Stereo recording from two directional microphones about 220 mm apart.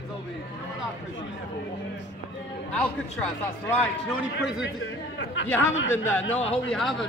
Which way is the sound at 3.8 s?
Centre (ahead or behind).